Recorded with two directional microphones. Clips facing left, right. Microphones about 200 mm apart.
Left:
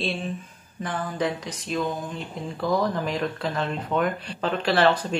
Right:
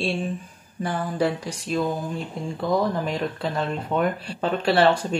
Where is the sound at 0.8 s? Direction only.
30° right (ahead or behind).